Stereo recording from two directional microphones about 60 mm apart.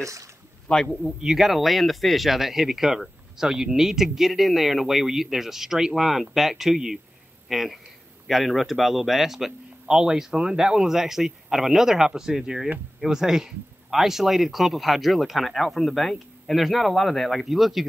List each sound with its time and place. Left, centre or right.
0.0 s speech: right
0.7 s a man's voice: centre
1.0 s a man's voice: centre